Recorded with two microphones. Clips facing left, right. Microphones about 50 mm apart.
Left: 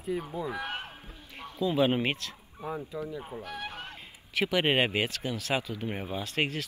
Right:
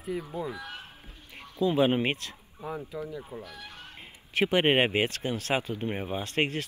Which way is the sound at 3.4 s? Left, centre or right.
Left.